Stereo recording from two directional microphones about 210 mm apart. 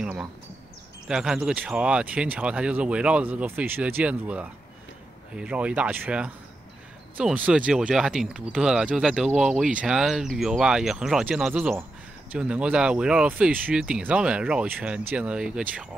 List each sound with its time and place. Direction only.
0.0 s insect: 5° right (ahead or behind)
1.0 s speech: 5° right (ahead or behind)